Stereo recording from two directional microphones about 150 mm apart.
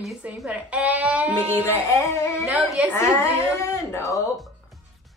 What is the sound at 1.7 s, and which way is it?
Music, 20° left (ahead or behind).